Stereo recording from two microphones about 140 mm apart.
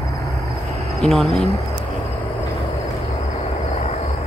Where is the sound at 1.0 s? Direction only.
Centre (ahead or behind).